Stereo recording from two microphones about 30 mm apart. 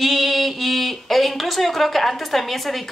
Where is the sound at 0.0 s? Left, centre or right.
Centre.